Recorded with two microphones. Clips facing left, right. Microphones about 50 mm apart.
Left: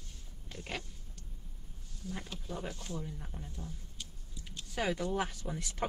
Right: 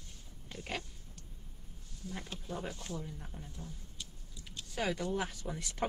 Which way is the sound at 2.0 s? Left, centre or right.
Centre.